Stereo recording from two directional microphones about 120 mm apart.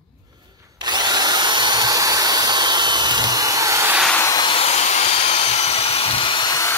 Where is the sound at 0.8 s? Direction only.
35° right (ahead or behind).